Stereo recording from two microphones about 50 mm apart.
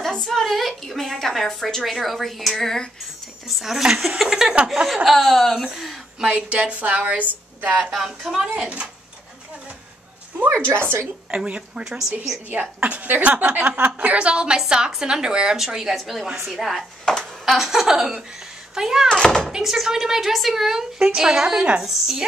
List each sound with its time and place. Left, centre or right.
0.0 s a woman's voice: centre
3.4 s a woman's voice: centre
5.7 s speech: centre
6.2 s a woman's voice: right
7.8 s a woman's voice: centre
8.5 s a woman's voice: right
10.8 s a woman's voice: right
11.2 s a woman's voice: right
12.4 s a woman's voice: right; by 16.8 s centre
17.0 s a woman's voice: centre
17.5 s a woman's voice: centre
19.0 s speech: centre
19.5 s a woman's voice: centre